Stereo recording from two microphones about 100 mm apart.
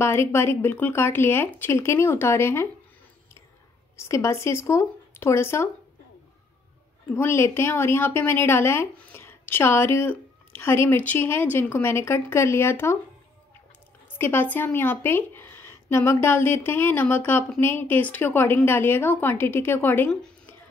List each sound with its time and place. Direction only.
0.0 s a woman's voice: 25° left (ahead or behind)
3.9 s a woman's voice: 30° left (ahead or behind)
7.2 s a woman's voice: 25° left (ahead or behind)
14.1 s a woman's voice: 20° left (ahead or behind)